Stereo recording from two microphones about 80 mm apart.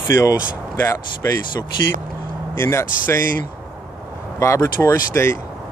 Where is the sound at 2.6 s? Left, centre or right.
Left.